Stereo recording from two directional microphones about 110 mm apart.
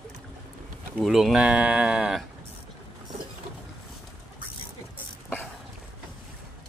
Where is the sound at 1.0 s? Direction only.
5° right (ahead or behind).